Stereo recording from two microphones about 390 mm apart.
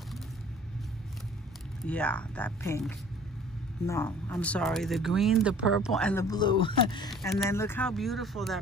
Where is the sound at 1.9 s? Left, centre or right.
Centre.